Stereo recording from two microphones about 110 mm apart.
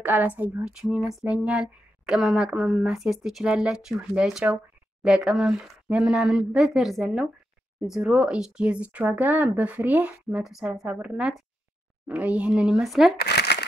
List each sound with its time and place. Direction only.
0.0 s speech: 15° right (ahead or behind)